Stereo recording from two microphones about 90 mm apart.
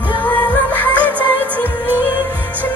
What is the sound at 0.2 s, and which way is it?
Music, 15° left (ahead or behind).